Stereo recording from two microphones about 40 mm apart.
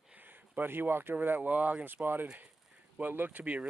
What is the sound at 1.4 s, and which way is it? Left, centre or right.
Speech, right.